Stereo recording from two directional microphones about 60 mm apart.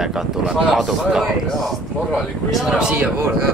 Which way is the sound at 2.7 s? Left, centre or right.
Centre.